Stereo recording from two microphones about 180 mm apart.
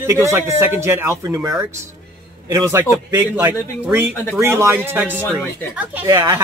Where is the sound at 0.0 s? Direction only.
15° right (ahead or behind).